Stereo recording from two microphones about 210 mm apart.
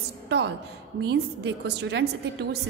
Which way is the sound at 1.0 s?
55° right (ahead or behind).